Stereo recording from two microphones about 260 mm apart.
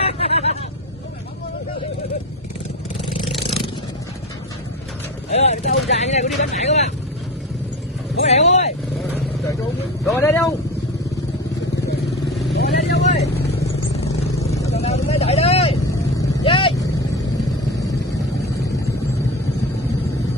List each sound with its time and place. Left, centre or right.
0.0 s vehicle: left
5.3 s speech: left
8.2 s vehicle: left
10.0 s speech: centre
12.5 s vehicle: left
14.7 s vehicle: left